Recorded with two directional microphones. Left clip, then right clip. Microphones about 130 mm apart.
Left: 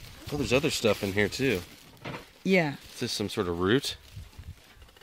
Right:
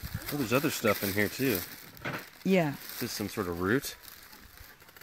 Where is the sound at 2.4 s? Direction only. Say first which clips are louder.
Left 3 dB; 15° left (ahead or behind).